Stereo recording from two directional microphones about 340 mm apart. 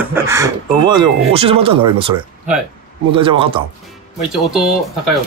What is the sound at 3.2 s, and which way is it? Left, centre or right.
Speech, centre.